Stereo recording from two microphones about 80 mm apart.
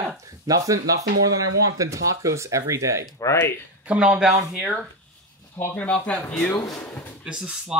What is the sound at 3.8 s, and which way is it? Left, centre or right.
Speech, centre.